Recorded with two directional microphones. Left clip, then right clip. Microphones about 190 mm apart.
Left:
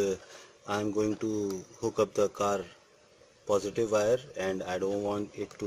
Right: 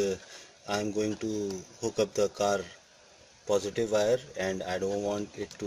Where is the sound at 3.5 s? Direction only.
15° left (ahead or behind).